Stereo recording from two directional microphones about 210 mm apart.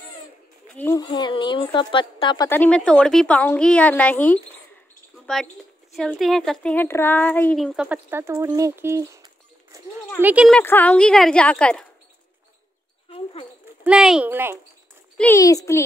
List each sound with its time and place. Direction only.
0.7 s speech: 15° left (ahead or behind); by 9.8 s 15° right (ahead or behind)
10.2 s speech: 5° right (ahead or behind)
10.6 s speech: 10° left (ahead or behind)
13.1 s a sound: 25° left (ahead or behind)
13.8 s speech: 5° right (ahead or behind)
15.1 s speech: 10° left (ahead or behind)